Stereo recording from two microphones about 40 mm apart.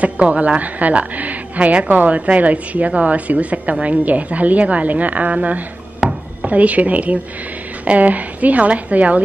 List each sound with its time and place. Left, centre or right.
0.0 s a woman's voice: right
6.0 s a sound: centre
6.4 s a woman's voice: right